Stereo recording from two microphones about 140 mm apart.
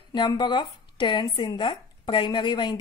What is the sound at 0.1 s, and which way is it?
Speech, 30° left (ahead or behind).